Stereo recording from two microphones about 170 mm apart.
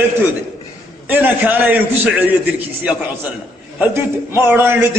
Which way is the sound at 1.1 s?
10° right (ahead or behind).